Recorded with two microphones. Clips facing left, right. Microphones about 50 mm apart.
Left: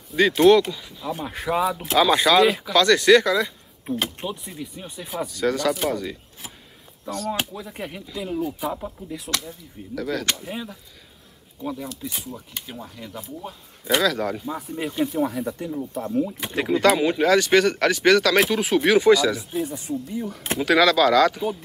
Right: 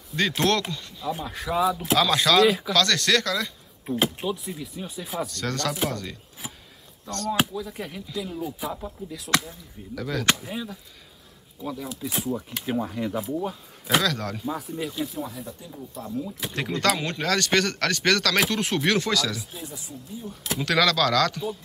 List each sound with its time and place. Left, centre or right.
0.1 s speech: centre
3.9 s speech: centre
7.6 s speech: centre
11.6 s speech: centre
11.9 s speech: centre
14.8 s speech: left
15.1 s speech: left
15.9 s speech: left
16.3 s speech: centre
19.6 s speech: left
19.9 s speech: left
20.5 s speech: centre